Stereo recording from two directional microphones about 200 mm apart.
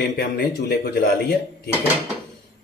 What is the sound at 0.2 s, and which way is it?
Speech, 50° left (ahead or behind).